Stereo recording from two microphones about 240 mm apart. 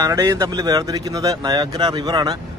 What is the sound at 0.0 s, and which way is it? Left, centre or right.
Speech, centre.